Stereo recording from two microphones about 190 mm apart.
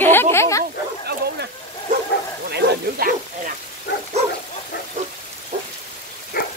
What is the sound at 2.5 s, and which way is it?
Bow-wow, 50° right (ahead or behind).